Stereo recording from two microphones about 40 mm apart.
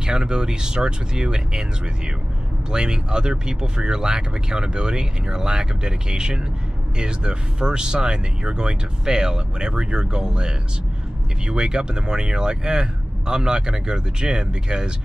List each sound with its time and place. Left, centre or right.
0.0 s speech: centre
2.7 s speech: centre